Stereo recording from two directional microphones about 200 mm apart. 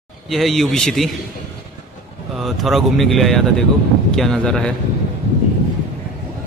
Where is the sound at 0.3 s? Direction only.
Centre (ahead or behind).